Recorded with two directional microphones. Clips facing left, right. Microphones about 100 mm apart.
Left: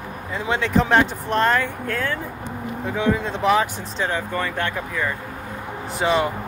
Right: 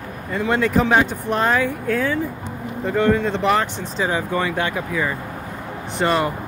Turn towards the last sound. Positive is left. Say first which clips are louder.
# right 1 dB
turn(degrees=0)  # may be behind; listen again after turning